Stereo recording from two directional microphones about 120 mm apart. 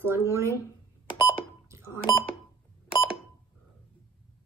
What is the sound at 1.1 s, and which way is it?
Beep, 45° left (ahead or behind).